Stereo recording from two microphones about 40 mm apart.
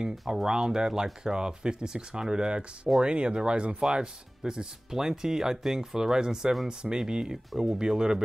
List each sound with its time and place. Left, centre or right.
0.3 s speech: centre